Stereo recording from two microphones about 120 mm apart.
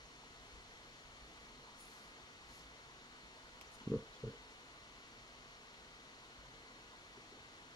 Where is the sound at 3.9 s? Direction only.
35° left (ahead or behind).